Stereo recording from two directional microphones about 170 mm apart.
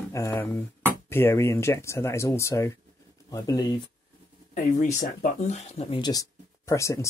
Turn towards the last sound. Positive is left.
turn(degrees=15)  # may be behind; listen again after turning